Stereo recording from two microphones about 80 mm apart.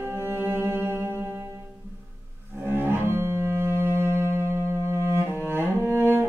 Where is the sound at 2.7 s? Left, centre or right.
Right.